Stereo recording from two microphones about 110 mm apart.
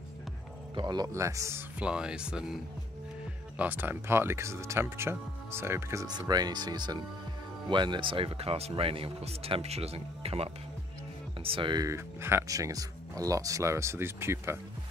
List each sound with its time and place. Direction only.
0.7 s speech: 40° right (ahead or behind)
1.1 s speech: 25° right (ahead or behind)
1.8 s speech: 10° right (ahead or behind)
3.5 s speech: 15° right (ahead or behind)
6.0 s speech: 40° right (ahead or behind); by 10.5 s 65° right (ahead or behind)
11.4 s speech: 50° right (ahead or behind)
11.8 s speech: 25° right (ahead or behind)